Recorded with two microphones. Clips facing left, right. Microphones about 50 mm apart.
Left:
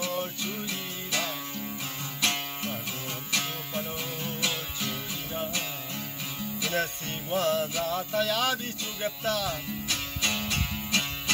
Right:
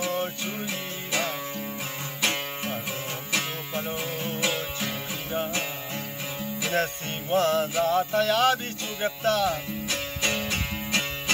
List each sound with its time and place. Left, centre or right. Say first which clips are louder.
0.1 s music: right 3 dB; right
0.5 s music: right 3 dB; right
6.7 s music: right 4 dB; right
9.5 s music: right 4 dB; centre